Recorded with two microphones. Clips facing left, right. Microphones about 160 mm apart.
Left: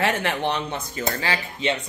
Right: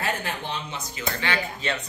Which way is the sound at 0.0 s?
85° left.